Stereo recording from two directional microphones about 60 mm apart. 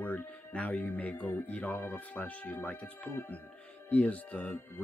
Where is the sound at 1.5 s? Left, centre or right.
Left.